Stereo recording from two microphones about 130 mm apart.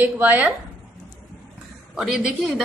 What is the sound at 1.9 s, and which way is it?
Speech, centre (ahead or behind).